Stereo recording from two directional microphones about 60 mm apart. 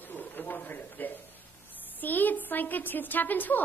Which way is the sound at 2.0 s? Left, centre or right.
Left.